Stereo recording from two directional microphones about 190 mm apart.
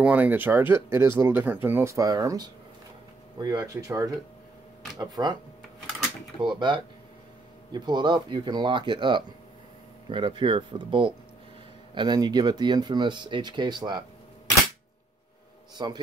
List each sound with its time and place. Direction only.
0.0 s speech: 10° right (ahead or behind)
6.4 s speech: 25° right (ahead or behind)
15.8 s speech: 25° right (ahead or behind)